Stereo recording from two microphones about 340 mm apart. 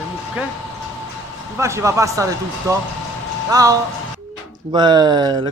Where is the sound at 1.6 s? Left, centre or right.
Centre.